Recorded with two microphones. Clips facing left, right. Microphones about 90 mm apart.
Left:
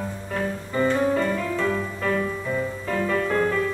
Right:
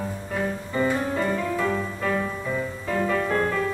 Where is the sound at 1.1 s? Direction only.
20° right (ahead or behind).